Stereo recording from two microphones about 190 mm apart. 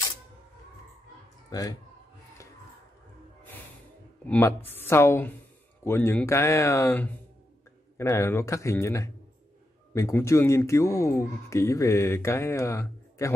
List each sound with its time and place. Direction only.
1.5 s speech: 20° left (ahead or behind)
4.3 s speech: 10° left (ahead or behind)